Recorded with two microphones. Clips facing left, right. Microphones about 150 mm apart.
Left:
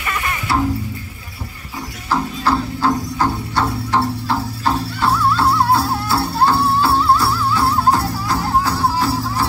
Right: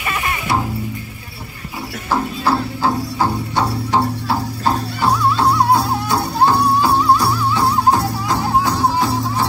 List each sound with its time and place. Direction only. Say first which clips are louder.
0.0 s music: right 1 dB; 20° right (ahead or behind)
2.0 s music: even; 15° right (ahead or behind)